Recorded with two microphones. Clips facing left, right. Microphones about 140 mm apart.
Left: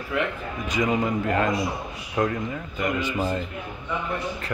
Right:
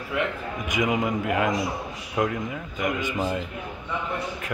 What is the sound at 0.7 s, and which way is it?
A man's voice, 20° right (ahead or behind).